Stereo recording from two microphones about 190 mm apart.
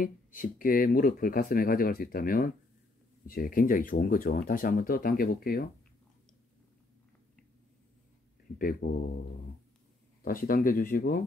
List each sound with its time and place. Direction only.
0.0 s speech: 45° left (ahead or behind)
8.8 s speech: 55° left (ahead or behind)
10.2 s speech: 50° left (ahead or behind)